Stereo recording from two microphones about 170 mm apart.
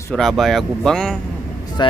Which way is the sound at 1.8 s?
25° left (ahead or behind).